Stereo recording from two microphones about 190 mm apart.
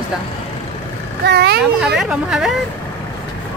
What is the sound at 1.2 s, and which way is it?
Speech, 60° right (ahead or behind).